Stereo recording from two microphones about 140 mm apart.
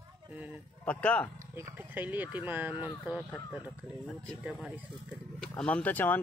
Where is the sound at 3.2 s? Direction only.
Centre (ahead or behind).